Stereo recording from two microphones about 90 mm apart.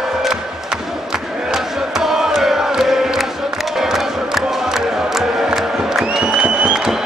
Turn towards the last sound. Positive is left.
turn(degrees=-10)  # may be behind; listen again after turning